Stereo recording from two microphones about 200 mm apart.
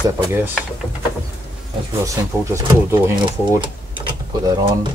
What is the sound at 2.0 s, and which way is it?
Speech, 15° right (ahead or behind).